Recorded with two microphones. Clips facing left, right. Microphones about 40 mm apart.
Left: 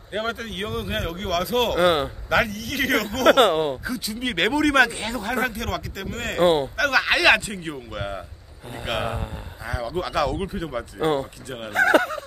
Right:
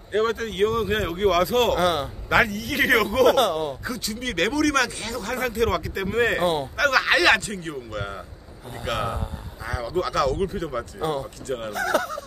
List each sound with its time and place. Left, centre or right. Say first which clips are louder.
0.1 s speech: right 4 dB; centre
1.8 s speech: left 3 dB; left
2.2 s speech: right 4 dB; centre
3.3 s speech: left 3 dB; left
3.8 s speech: left 2 dB; centre; by 5.3 s left
5.5 s speech: right 6 dB; centre
6.4 s speech: left 5 dB; left
6.8 s a man's voice: right 4 dB; centre
11.0 s speech: left 5 dB; left
11.4 s a man's voice: right 4 dB; centre
11.7 s speech: left 7 dB; left